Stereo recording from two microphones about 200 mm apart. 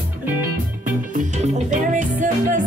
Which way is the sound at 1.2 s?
35° right (ahead or behind).